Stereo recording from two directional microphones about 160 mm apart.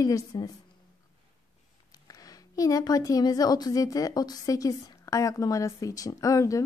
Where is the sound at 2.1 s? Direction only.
20° left (ahead or behind).